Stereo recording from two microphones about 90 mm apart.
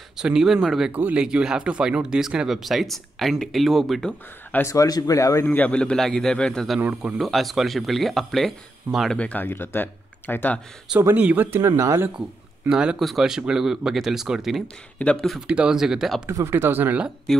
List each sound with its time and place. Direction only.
0.2 s speech: 5° right (ahead or behind)
0.9 s speech: 20° right (ahead or behind)
1.2 s speech: 10° right (ahead or behind)
4.6 s speech: 40° left (ahead or behind)
5.5 s a man's voice: 15° left (ahead or behind)
6.8 s a man's voice: 10° right (ahead or behind)
7.2 s speech: centre (ahead or behind)
9.2 s speech: 20° left (ahead or behind)
11.1 s speech: 20° right (ahead or behind)
12.6 s a man's voice: 10° right (ahead or behind)
15.0 s a man's voice: 10° left (ahead or behind)
15.4 s a man's voice: 10° right (ahead or behind)
16.3 s speech: 30° right (ahead or behind)